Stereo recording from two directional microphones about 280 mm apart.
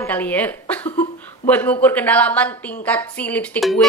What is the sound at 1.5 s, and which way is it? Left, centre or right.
A woman's voice, centre.